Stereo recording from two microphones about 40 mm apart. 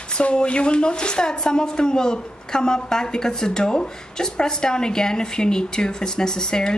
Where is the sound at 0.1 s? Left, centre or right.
Left.